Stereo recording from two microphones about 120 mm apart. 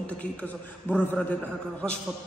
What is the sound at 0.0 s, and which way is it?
A man's voice, 10° left (ahead or behind).